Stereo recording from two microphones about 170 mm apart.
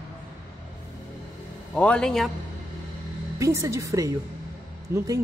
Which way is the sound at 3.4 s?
15° right (ahead or behind).